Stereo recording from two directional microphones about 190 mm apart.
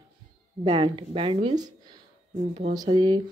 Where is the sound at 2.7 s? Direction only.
20° right (ahead or behind).